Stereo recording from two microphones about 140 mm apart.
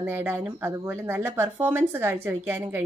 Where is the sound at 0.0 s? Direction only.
15° right (ahead or behind).